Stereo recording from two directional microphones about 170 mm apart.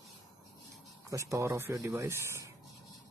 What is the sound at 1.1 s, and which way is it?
Speech, 20° right (ahead or behind).